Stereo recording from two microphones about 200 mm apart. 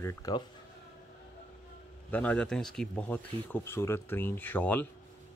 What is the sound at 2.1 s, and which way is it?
Speech, 5° left (ahead or behind).